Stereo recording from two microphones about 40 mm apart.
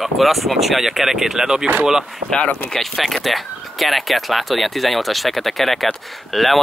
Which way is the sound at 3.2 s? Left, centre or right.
Centre.